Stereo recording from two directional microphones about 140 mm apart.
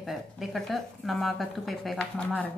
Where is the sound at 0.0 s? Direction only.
Centre (ahead or behind).